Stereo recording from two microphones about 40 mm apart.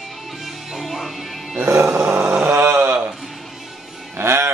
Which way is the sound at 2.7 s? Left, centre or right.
Right.